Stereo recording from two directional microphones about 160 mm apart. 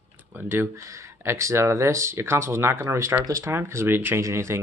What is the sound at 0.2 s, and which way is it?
Speech, 10° right (ahead or behind).